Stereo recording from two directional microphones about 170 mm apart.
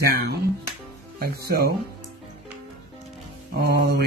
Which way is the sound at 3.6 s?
65° right (ahead or behind).